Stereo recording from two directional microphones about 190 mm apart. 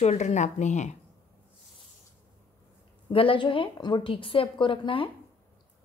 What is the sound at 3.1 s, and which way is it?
A woman's voice, 30° left (ahead or behind).